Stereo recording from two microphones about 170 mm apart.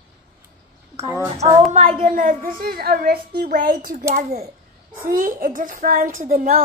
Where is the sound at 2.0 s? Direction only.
50° right (ahead or behind).